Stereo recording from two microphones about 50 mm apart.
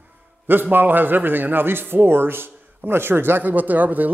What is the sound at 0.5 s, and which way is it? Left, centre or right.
A man's voice, right.